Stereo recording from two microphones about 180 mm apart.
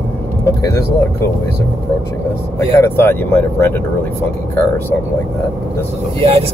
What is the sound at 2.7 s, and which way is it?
Speech, 15° left (ahead or behind).